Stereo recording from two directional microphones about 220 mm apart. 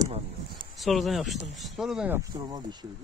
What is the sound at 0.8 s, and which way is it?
Speech, centre (ahead or behind).